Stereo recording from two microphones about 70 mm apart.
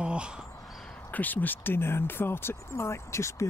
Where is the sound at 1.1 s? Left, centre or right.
Left.